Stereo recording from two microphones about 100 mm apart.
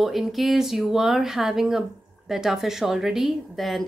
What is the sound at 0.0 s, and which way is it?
A woman's voice, centre (ahead or behind).